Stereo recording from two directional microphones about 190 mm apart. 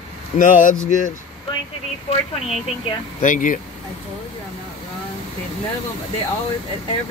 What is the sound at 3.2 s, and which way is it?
Speech, 40° left (ahead or behind).